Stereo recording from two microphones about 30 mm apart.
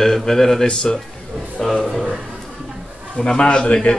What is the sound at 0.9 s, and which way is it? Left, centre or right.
Speech, left.